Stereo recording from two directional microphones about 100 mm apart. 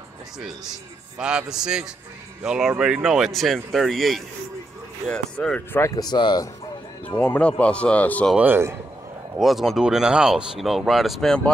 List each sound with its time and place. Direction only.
1.1 s speech: 5° right (ahead or behind); by 5.6 s 10° left (ahead or behind)
5.7 s speech: 25° left (ahead or behind)
5.9 s speech: 45° left (ahead or behind)
7.1 s speech: 15° left (ahead or behind)
8.4 s speech: 20° right (ahead or behind)
9.4 s speech: centre (ahead or behind)